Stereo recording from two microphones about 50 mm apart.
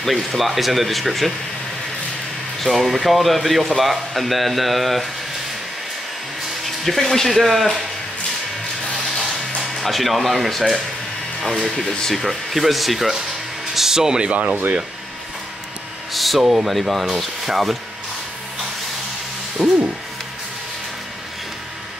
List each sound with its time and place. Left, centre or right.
0.0 s speech: centre
2.6 s speech: centre
6.6 s speech: centre
9.8 s speech: centre
12.2 s speech: centre
14.3 s speech: right
16.1 s speech: centre
16.7 s speech: centre
19.6 s speech: centre